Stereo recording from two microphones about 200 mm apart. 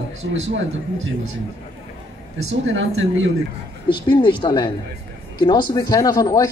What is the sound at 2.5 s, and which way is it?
Speech, 70° right (ahead or behind).